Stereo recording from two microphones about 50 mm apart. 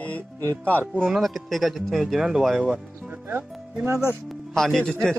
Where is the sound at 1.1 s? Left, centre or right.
Centre.